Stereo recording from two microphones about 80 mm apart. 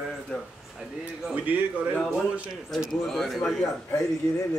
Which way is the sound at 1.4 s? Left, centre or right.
Right.